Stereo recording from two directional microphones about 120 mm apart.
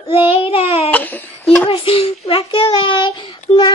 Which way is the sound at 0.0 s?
50° left (ahead or behind).